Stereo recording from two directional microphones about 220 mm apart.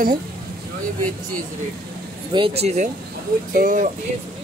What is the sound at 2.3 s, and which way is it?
Speech, 25° right (ahead or behind).